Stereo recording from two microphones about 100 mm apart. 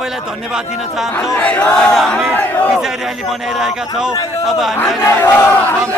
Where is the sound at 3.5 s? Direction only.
5° right (ahead or behind).